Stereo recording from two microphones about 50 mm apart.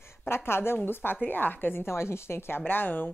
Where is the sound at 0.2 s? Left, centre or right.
Left.